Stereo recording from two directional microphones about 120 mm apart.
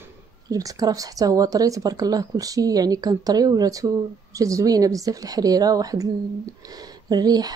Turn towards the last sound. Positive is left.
turn(degrees=-35)  # may be behind; listen again after turning